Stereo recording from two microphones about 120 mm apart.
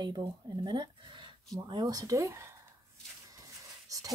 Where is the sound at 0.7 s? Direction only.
40° right (ahead or behind); by 2.5 s 25° right (ahead or behind).